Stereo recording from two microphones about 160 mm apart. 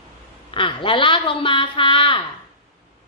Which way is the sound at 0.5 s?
30° left (ahead or behind).